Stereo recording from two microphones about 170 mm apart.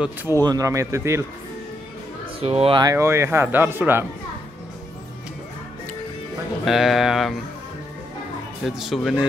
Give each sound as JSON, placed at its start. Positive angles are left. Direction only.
{"t": 0.0, "sound": "speech", "side_deg": -10}
{"t": 2.4, "sound": "speech", "side_deg": -35}
{"t": 2.8, "sound": "speech", "side_deg": -15}
{"t": 6.6, "sound": "speech", "side_deg": 0}
{"t": 8.6, "sound": "speech", "side_deg": 0}